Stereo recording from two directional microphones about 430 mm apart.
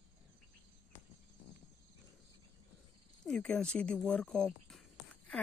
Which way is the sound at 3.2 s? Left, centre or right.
Centre.